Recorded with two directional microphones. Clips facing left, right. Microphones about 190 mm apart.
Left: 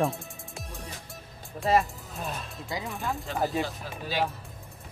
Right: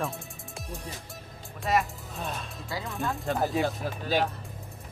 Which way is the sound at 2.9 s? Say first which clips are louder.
Right 6 dB; centre (ahead or behind).